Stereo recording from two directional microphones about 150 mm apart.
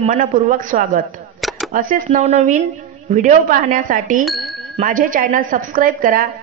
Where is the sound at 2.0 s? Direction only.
50° right (ahead or behind); by 4.3 s 65° right (ahead or behind).